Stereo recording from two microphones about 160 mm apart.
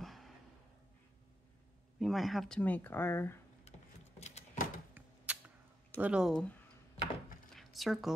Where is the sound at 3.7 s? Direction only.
40° left (ahead or behind).